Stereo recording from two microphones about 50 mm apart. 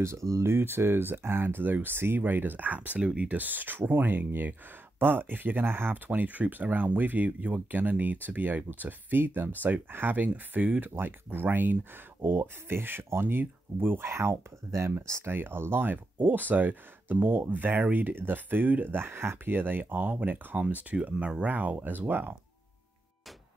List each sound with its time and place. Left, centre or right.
0.0 s speech: right
3.3 s speech: right
6.0 s speech: right
10.1 s speech: right
15.3 s speech: right
20.5 s speech: right